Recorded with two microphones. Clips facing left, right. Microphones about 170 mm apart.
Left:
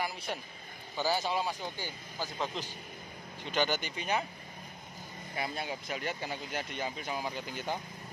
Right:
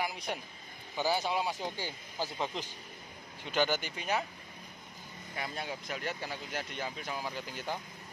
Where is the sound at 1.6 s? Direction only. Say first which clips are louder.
Right 2 dB; 30° right (ahead or behind).